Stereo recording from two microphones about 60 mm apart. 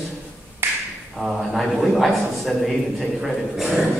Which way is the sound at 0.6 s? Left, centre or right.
Right.